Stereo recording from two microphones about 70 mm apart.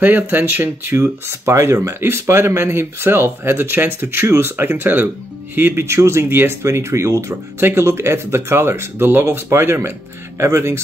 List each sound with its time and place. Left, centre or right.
0.0 s speech: right
6.2 s speech: right
6.6 s speech: right